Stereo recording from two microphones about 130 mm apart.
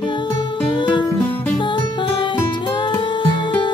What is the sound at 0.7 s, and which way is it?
Music, 40° left (ahead or behind).